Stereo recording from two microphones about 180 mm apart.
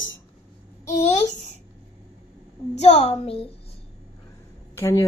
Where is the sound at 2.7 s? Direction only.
35° left (ahead or behind).